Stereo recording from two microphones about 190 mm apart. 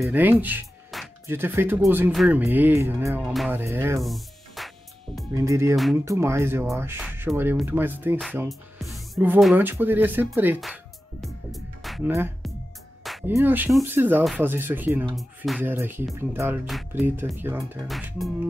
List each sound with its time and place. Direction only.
0.1 s speech: 10° right (ahead or behind)
4.0 s music: centre (ahead or behind)
5.3 s speech: 15° right (ahead or behind)
8.5 s music: centre (ahead or behind)
13.3 s speech: 10° right (ahead or behind)
15.1 s music: centre (ahead or behind)
15.6 s speech: 10° right (ahead or behind)
16.6 s music: centre (ahead or behind)
17.4 s speech: 10° right (ahead or behind)
17.8 s music: centre (ahead or behind)